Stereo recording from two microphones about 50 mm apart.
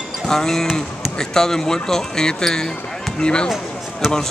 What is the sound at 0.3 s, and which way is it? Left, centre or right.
Speech, centre.